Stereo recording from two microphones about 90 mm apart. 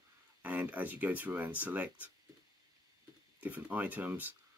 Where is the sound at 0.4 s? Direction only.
15° right (ahead or behind).